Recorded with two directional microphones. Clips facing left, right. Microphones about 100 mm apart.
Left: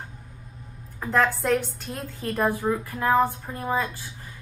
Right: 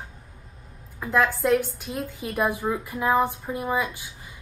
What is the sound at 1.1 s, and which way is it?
A woman's voice, 5° right (ahead or behind).